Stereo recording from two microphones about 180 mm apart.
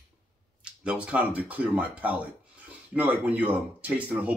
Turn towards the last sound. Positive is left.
turn(degrees=-10)  # may be behind; listen again after turning